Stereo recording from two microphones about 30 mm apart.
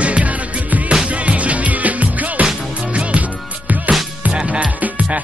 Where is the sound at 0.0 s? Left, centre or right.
Right.